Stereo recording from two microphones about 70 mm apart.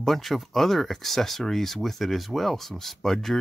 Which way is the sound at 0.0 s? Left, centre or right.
Centre.